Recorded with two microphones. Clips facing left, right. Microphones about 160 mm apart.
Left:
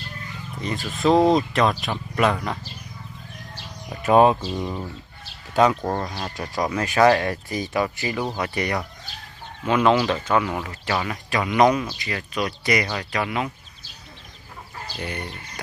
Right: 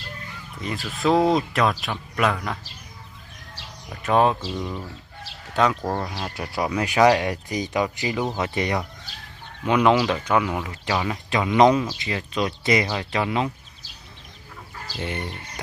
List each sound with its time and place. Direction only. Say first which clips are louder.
0.6 s speech: left 2 dB; centre (ahead or behind)
3.9 s speech: left 4 dB; 10° left (ahead or behind)
5.5 s speech: left 3 dB; 10° left (ahead or behind)
5.8 s speech: left 1 dB; 5° right (ahead or behind); by 13.5 s 25° right (ahead or behind)
15.0 s speech: right 2 dB; 25° right (ahead or behind)